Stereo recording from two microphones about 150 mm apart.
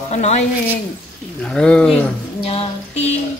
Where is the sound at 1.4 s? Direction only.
5° left (ahead or behind).